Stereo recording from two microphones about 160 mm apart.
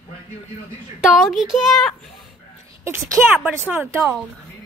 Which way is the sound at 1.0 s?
5° right (ahead or behind).